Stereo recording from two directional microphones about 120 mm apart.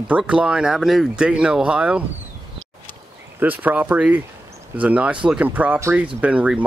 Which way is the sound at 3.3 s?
15° right (ahead or behind).